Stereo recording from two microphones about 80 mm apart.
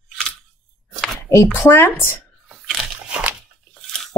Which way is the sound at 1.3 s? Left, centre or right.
Left.